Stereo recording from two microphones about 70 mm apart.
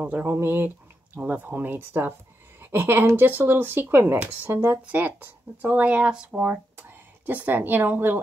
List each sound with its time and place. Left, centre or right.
0.0 s a woman's voice: right
4.8 s speech: right